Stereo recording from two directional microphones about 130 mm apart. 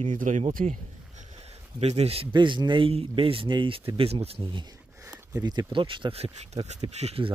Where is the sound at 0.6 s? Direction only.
60° right (ahead or behind).